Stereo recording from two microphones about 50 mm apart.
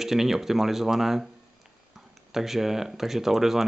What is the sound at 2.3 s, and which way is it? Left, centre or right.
Speech, centre.